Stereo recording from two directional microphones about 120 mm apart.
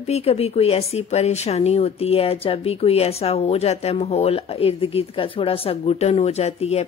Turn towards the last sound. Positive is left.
turn(degrees=60)  # may be behind; listen again after turning